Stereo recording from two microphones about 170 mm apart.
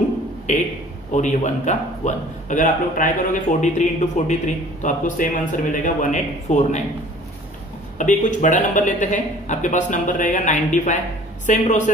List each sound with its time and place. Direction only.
0.5 s a man's voice: 45° left (ahead or behind)
8.0 s a man's voice: 50° left (ahead or behind)